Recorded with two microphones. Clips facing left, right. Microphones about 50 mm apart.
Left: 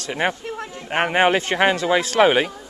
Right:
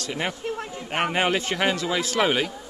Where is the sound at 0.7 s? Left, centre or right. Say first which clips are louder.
Left 6 dB; left.